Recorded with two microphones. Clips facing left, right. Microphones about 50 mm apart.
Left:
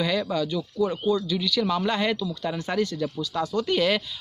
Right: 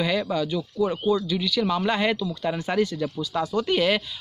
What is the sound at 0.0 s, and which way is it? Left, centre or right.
Speech, centre.